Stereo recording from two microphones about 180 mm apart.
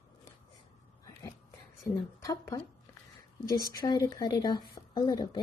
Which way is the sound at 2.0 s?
25° left (ahead or behind).